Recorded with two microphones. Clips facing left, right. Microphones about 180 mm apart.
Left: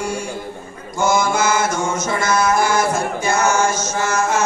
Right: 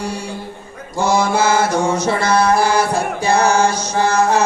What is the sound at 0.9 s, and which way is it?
Mantra, 35° right (ahead or behind).